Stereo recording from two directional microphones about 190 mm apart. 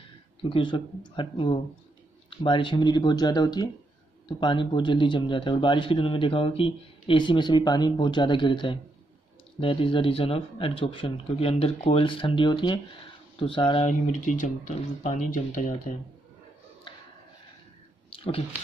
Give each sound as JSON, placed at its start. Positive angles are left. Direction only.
{"t": 0.5, "sound": "speech", "side_deg": 25}
{"t": 13.8, "sound": "speech", "side_deg": 40}
{"t": 18.1, "sound": "a sound", "side_deg": 30}